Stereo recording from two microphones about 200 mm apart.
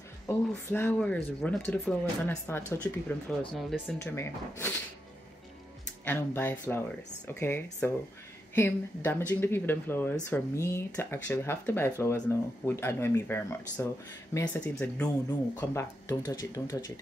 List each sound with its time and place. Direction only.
0.3 s speech: 10° left (ahead or behind)
3.3 s speech: centre (ahead or behind)
6.0 s speech: 10° left (ahead or behind)